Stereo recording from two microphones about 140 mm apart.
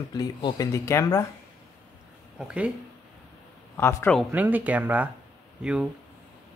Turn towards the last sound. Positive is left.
turn(degrees=-5)  # may be behind; listen again after turning